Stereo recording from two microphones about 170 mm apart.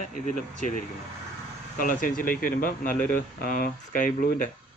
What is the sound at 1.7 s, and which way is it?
Speech, 55° left (ahead or behind).